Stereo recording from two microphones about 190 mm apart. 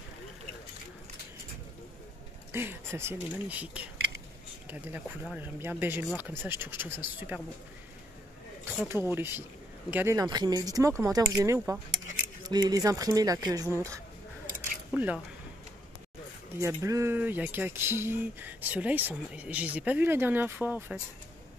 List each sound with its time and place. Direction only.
2.5 s speech: 15° right (ahead or behind)
9.0 s speech: 10° right (ahead or behind)
16.6 s speech: 15° right (ahead or behind)